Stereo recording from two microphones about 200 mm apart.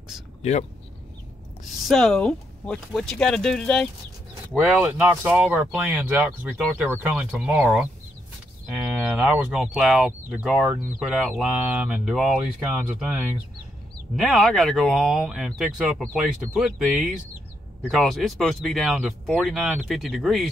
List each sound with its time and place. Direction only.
0.4 s speech: 35° left (ahead or behind)
1.7 s speech: centre (ahead or behind)
4.6 s speech: 10° right (ahead or behind)
14.1 s speech: centre (ahead or behind)